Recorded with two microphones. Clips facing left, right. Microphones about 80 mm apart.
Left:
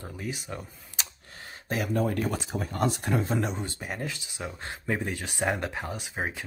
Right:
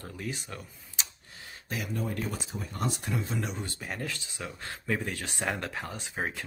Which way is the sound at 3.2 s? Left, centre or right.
Left.